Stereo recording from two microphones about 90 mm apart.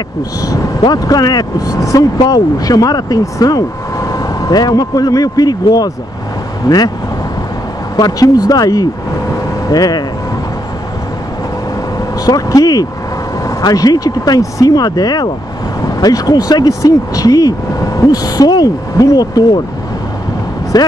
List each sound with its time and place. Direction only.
0.4 s speech: 40° left (ahead or behind)
7.9 s speech: 45° left (ahead or behind)
12.3 s speech: 40° left (ahead or behind)
20.7 s speech: 45° left (ahead or behind)